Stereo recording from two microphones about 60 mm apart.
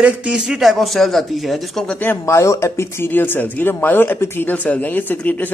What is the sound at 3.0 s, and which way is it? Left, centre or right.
Speech, left.